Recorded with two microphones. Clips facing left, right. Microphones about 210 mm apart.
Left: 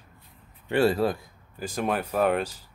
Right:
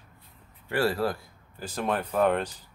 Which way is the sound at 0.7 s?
25° left (ahead or behind).